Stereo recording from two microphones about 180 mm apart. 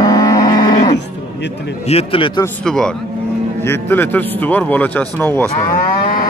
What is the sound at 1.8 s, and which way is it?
Speech, 30° left (ahead or behind).